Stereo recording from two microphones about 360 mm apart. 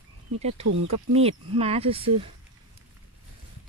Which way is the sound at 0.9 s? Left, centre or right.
Centre.